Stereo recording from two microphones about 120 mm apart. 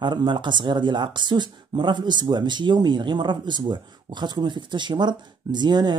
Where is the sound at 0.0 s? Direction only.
40° right (ahead or behind).